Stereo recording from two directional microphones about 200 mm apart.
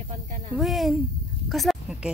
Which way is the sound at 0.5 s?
Centre (ahead or behind).